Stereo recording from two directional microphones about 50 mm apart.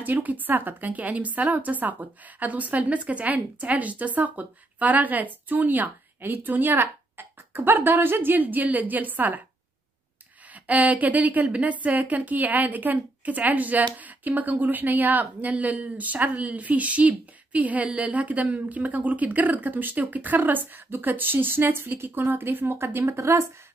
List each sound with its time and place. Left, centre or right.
0.0 s speech: right
10.5 s speech: right